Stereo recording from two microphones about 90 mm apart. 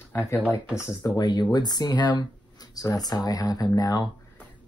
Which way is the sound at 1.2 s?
50° left (ahead or behind).